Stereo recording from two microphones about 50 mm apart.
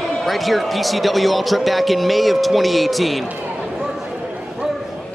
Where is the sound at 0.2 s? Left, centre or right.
Centre.